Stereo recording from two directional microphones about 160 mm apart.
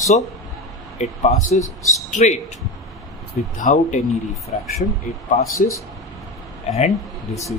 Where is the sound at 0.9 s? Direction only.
45° left (ahead or behind).